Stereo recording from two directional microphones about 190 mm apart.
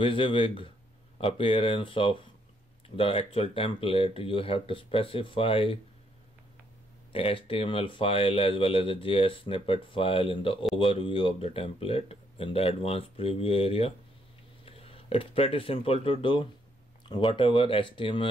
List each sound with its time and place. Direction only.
0.0 s speech: 25° left (ahead or behind)
7.1 s speech: 30° left (ahead or behind)